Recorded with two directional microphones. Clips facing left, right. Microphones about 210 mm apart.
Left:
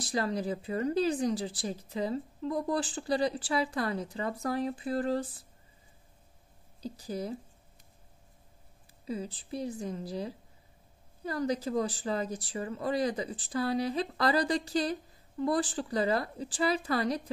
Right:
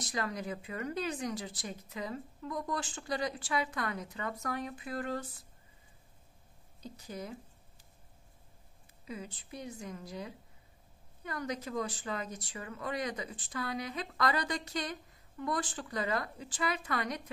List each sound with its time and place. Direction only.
0.0 s speech: 30° left (ahead or behind)
6.8 s speech: 35° left (ahead or behind)
9.0 s speech: 35° left (ahead or behind)